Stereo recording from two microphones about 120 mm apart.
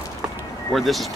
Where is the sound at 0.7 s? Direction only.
Centre (ahead or behind).